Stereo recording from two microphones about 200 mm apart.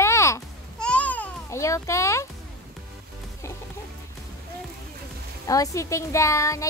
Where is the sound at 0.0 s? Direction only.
15° left (ahead or behind).